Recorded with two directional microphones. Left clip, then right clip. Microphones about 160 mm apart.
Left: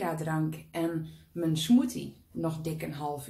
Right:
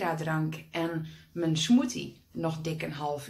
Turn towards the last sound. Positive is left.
turn(degrees=5)  # may be behind; listen again after turning